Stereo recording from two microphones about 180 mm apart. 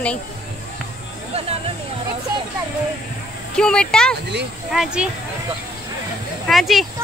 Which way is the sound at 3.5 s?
5° left (ahead or behind).